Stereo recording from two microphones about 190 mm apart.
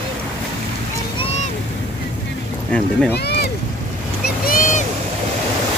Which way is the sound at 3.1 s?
60° left (ahead or behind).